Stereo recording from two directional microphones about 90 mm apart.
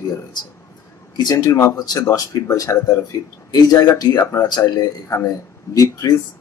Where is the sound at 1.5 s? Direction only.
30° left (ahead or behind).